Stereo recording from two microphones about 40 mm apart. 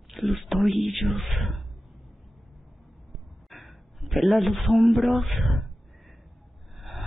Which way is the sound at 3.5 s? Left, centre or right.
Centre.